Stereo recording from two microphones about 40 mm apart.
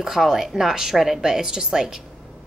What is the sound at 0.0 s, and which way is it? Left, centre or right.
A woman's voice, centre.